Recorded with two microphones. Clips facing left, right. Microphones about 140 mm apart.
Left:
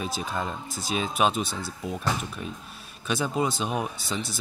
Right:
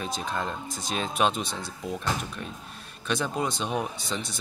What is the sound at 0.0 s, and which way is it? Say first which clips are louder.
Speech: even; 5° left (ahead or behind).